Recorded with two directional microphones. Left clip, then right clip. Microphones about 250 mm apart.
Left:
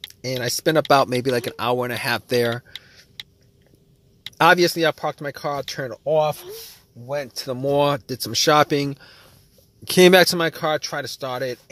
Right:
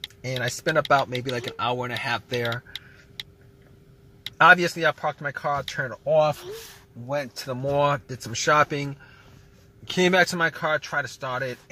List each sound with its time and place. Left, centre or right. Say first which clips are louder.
0.1 s speech: left 5 dB; left
2.7 s tick-tock: even; centre
3.2 s a sound: even; centre
4.4 s speech: left 1 dB; left
7.3 s speech: left 6 dB; left